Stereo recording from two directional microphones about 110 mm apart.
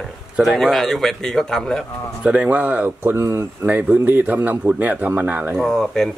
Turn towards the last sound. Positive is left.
turn(degrees=5)  # may be behind; listen again after turning